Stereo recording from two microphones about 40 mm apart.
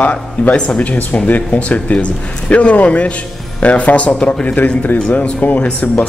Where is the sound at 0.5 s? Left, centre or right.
Left.